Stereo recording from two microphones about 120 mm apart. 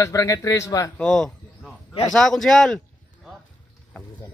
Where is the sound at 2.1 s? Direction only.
5° left (ahead or behind).